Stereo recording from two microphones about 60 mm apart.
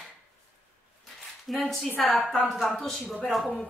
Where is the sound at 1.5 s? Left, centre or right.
Centre.